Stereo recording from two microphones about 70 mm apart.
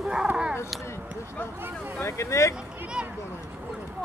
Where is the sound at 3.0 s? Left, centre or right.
Centre.